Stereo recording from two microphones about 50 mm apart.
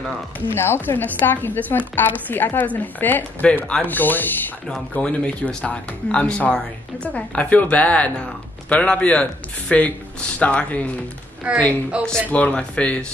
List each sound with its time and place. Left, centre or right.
0.4 s speech: left
5.0 s a woman's voice: left
11.5 s a woman's voice: right
12.3 s a woman's voice: left